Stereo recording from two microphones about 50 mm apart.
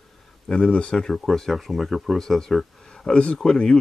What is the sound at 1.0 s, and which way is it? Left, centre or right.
Speech, centre.